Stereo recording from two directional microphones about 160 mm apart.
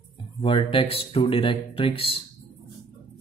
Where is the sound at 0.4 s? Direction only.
35° left (ahead or behind).